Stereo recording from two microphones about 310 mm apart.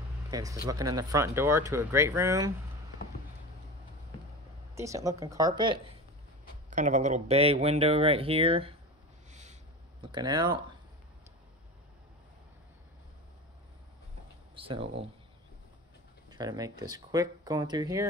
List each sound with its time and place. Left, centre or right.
0.3 s speech: centre
4.7 s speech: centre
6.7 s speech: right
9.3 s a sound: right
10.0 s speech: centre
14.5 s speech: centre
16.3 s speech: centre